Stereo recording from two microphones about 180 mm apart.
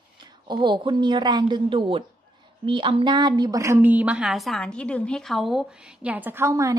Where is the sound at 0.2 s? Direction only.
25° right (ahead or behind).